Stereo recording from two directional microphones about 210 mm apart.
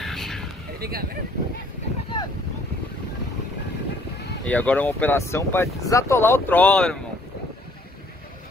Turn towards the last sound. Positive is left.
turn(degrees=5)  # may be behind; listen again after turning